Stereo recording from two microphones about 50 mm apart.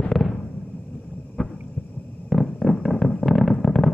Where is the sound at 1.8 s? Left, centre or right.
Left.